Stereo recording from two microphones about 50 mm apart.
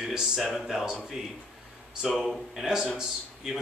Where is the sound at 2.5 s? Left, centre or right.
Centre.